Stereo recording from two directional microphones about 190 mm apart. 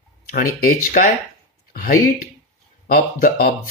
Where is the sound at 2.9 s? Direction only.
45° left (ahead or behind).